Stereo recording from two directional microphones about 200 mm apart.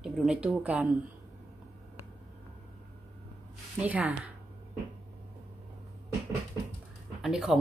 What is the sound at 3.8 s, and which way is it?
Speech, 10° right (ahead or behind).